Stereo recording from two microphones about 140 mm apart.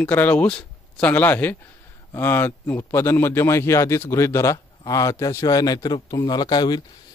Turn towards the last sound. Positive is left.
turn(degrees=30)  # may be behind; listen again after turning